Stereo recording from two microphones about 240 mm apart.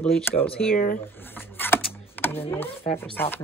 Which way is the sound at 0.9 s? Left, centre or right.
Centre.